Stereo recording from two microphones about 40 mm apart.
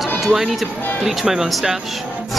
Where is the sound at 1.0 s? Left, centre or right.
Centre.